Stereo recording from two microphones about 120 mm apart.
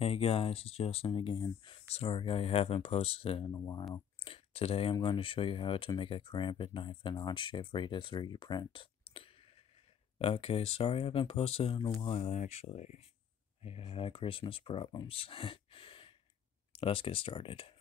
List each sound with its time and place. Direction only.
0.0 s speech: 55° left (ahead or behind)
1.9 s speech: 55° left (ahead or behind)
3.5 s speech: 30° left (ahead or behind)
4.2 s speech: 50° left (ahead or behind); by 13.0 s 70° left (ahead or behind)
13.6 s speech: 55° left (ahead or behind)